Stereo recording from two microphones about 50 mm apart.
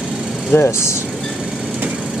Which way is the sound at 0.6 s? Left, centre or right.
Left.